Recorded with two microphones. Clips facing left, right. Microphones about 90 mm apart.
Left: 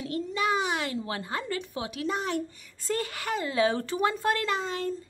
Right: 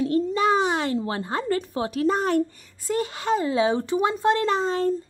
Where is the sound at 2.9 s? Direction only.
25° right (ahead or behind).